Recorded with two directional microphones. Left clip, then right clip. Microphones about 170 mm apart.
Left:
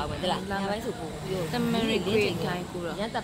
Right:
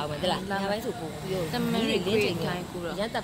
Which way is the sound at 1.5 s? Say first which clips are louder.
Left 1 dB; 5° left (ahead or behind).